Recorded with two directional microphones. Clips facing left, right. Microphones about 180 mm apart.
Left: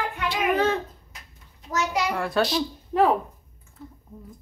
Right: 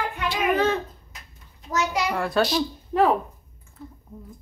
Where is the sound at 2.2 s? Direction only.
Centre (ahead or behind).